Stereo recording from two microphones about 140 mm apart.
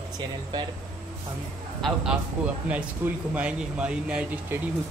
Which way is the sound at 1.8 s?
Centre (ahead or behind).